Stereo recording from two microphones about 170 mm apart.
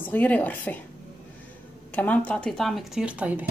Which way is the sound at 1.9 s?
10° left (ahead or behind).